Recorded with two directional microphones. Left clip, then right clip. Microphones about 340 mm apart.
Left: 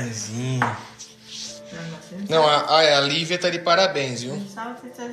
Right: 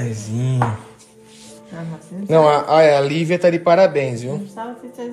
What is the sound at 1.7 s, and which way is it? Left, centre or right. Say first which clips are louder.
A man's voice: right 2 dB; centre.